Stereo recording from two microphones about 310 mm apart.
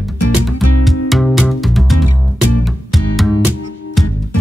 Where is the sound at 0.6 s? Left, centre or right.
Left.